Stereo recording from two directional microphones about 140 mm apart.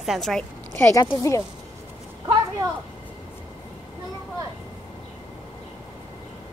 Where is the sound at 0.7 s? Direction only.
20° left (ahead or behind).